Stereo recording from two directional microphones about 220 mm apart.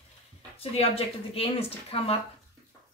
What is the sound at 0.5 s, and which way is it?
A woman's voice, 25° left (ahead or behind).